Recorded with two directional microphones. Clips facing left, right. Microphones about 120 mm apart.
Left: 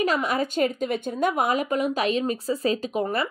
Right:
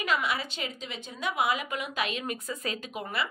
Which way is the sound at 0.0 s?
40° left (ahead or behind).